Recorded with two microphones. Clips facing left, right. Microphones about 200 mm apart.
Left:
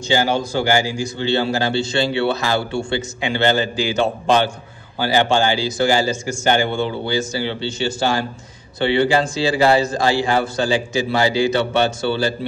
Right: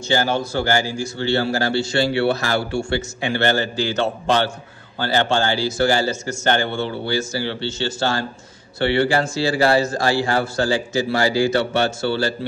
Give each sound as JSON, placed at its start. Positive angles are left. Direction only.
{"t": 0.1, "sound": "a man's voice", "side_deg": 15}